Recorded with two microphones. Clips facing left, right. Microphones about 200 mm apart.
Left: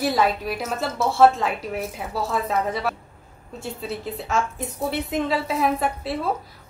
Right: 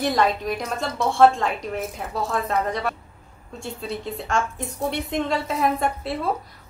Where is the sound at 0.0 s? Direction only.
5° left (ahead or behind).